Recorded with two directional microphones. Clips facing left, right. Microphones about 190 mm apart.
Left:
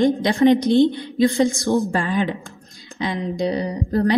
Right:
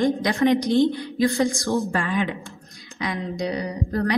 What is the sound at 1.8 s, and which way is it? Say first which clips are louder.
A woman's voice: left 3 dB; 30° left (ahead or behind).